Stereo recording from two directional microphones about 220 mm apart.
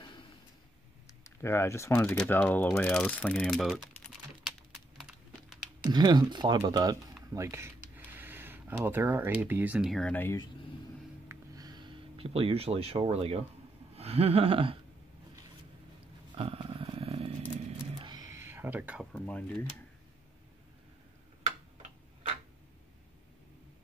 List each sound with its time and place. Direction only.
1.2 s speech: 10° left (ahead or behind)
4.5 s typing: centre (ahead or behind)
5.9 s speech: 20° right (ahead or behind); by 10.4 s 10° left (ahead or behind)
11.2 s a sound: 15° right (ahead or behind)
16.3 s purr: 25° right (ahead or behind)
18.0 s a sound: 15° right (ahead or behind)
19.1 s speech: 5° left (ahead or behind)